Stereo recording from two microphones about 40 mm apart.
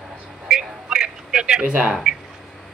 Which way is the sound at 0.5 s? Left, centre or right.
Centre.